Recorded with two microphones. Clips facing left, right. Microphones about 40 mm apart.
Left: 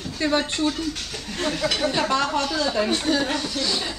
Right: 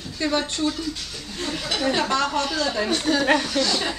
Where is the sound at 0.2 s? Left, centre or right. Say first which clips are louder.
Left 1 dB; centre.